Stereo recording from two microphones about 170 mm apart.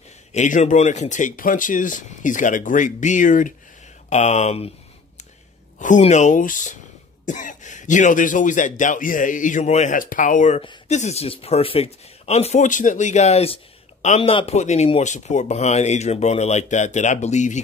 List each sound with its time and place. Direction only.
0.3 s speech: 45° left (ahead or behind)
5.8 s speech: 45° left (ahead or behind)